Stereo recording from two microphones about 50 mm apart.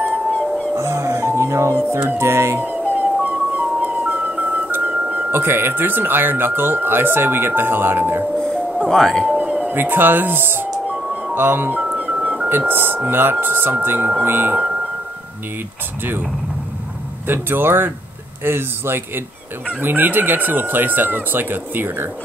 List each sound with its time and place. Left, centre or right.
0.7 s music: right
2.0 s speech: right
2.6 s music: right
4.6 s music: right
5.3 s speech: right
8.8 s speech: centre
9.4 s music: right
9.8 s speech: right
17.3 s speech: right